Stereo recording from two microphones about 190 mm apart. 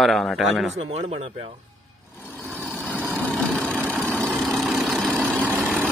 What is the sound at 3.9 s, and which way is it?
Engine, 10° right (ahead or behind).